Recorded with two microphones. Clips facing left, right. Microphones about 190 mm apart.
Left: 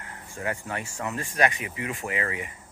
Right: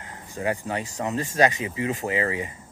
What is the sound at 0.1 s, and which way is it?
Speech, 20° right (ahead or behind).